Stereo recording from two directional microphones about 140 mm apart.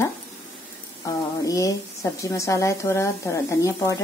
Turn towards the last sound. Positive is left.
turn(degrees=20)  # may be behind; listen again after turning